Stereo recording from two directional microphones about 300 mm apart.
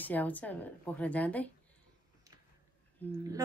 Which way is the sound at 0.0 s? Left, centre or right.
Centre.